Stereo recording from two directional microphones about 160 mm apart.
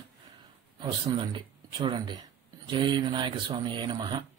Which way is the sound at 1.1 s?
25° right (ahead or behind).